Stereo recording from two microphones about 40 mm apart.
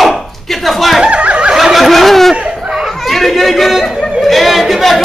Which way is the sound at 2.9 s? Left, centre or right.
Centre.